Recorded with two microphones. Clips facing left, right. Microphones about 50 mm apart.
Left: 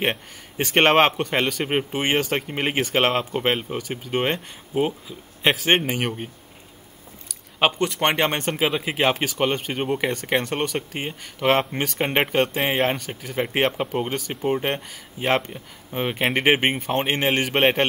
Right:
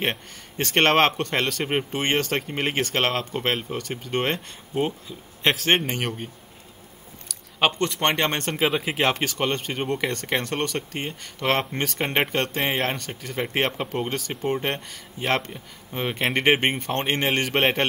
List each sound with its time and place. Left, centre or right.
0.0 s speech: centre